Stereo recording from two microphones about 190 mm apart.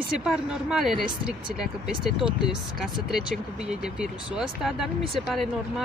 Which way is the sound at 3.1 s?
5° right (ahead or behind).